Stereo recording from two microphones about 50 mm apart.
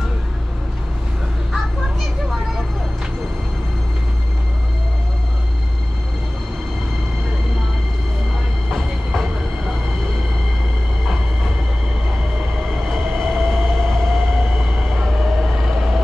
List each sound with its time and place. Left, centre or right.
8.6 s train: centre
12.8 s train: centre
14.6 s vehicle: centre